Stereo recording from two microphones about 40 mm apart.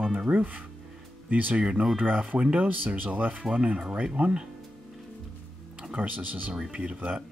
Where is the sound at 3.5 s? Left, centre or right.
Right.